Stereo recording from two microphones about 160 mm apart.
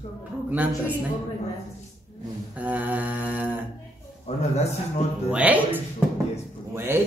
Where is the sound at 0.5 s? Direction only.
10° right (ahead or behind).